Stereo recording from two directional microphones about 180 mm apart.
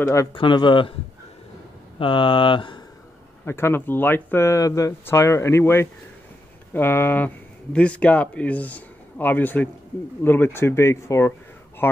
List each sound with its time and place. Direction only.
0.0 s speech: 15° left (ahead or behind)
0.3 s speech: 25° left (ahead or behind)
2.0 s speech: 25° left (ahead or behind)
3.4 s speech: 15° left (ahead or behind)